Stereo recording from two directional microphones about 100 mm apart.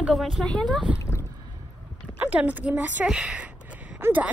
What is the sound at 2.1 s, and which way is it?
A woman's voice, 15° right (ahead or behind).